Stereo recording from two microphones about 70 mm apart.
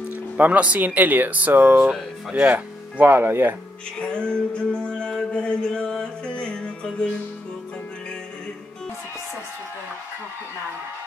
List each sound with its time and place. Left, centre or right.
0.1 s speech: right
4.0 s music: centre